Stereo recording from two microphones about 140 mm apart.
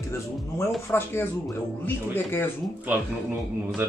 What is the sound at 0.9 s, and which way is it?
Speech, 15° left (ahead or behind).